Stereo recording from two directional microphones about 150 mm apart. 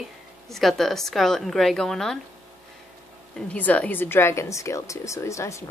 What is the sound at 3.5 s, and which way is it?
A woman's voice, 10° left (ahead or behind).